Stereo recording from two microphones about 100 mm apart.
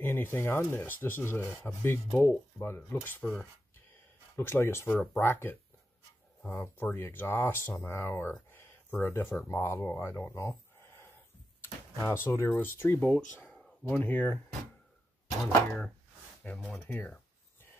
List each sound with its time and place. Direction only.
0.0 s speech: 20° left (ahead or behind)
4.4 s speech: 25° left (ahead or behind)
8.5 s a sound: 20° left (ahead or behind)
9.5 s speech: 25° left (ahead or behind)
16.4 s speech: 15° left (ahead or behind)